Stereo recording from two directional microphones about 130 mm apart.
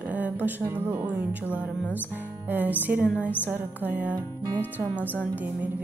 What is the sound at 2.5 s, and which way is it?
Speech, 15° right (ahead or behind).